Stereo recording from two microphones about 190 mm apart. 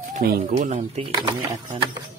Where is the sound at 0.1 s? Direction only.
50° right (ahead or behind).